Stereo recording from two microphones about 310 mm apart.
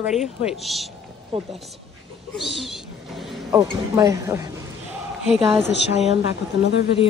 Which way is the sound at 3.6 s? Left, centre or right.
Centre.